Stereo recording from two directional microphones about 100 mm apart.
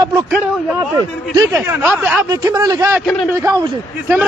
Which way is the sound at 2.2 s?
35° right (ahead or behind).